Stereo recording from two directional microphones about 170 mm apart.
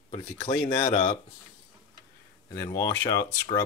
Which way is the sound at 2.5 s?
20° left (ahead or behind).